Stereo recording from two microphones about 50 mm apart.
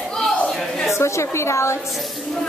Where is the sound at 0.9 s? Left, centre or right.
Left.